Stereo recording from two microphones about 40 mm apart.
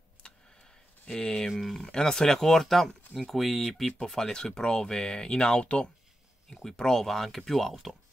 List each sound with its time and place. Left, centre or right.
0.2 s a sound: left
1.0 s speech: left
1.6 s speech: centre
1.9 s speech: centre
6.5 s speech: centre